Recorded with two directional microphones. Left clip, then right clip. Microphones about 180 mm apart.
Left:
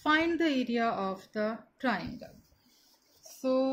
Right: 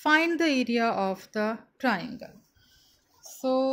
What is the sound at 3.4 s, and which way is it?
Speech, 55° right (ahead or behind).